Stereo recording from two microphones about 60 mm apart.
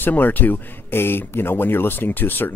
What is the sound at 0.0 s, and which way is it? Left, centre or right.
Speech, left.